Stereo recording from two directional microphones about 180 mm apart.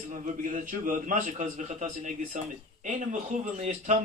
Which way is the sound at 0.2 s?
45° right (ahead or behind).